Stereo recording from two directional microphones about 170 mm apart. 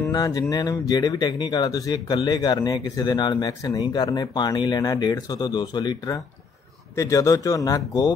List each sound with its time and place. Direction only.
0.1 s speech: 20° left (ahead or behind)